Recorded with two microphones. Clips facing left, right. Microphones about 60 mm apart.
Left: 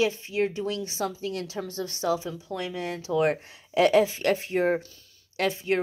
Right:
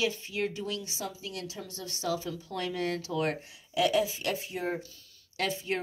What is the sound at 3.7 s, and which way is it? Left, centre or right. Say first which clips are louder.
Speech: left 7 dB; left.